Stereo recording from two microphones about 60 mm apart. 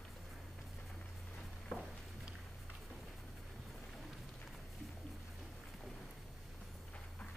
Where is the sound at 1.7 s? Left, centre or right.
Centre.